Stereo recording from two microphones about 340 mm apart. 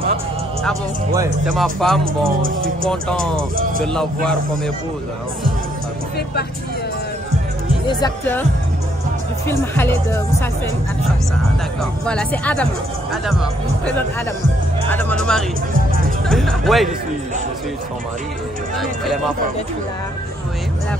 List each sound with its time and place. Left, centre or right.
1.1 s speech: centre
2.2 s speech: right
2.9 s speech: centre
7.8 s speech: centre
9.5 s speech: centre
11.8 s speech: centre
14.9 s speech: centre
18.8 s speech: centre